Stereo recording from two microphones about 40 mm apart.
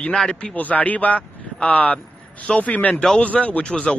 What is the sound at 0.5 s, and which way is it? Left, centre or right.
Speech, left.